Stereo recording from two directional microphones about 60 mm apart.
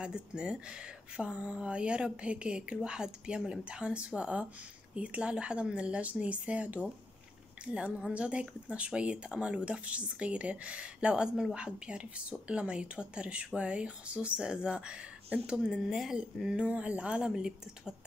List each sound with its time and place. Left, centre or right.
0.0 s speech: centre